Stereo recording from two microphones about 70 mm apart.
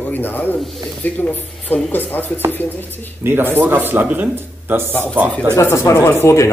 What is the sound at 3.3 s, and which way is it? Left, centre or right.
Speech, right.